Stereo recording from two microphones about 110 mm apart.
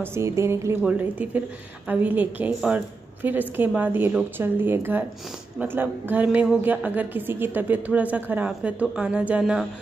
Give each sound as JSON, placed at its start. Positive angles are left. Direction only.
{"t": 0.0, "sound": "speech", "side_deg": -25}
{"t": 0.8, "sound": "a woman's voice", "side_deg": -15}
{"t": 9.4, "sound": "speech", "side_deg": -5}